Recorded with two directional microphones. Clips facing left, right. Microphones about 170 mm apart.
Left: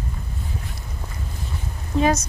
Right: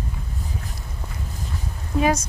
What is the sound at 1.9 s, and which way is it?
Speech, 10° right (ahead or behind).